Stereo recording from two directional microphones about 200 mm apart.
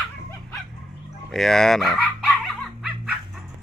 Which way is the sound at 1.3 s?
Centre (ahead or behind).